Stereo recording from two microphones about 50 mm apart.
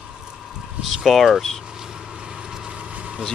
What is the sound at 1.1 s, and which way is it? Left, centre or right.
Speech, centre.